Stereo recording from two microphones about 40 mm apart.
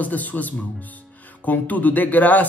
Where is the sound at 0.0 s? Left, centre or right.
Left.